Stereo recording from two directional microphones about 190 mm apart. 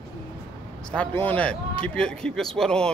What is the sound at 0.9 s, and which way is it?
Speech, 10° left (ahead or behind).